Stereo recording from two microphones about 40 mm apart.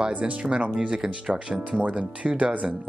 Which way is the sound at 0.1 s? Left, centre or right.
Right.